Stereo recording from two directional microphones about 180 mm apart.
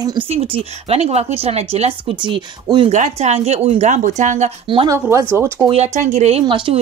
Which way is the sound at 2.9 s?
40° right (ahead or behind).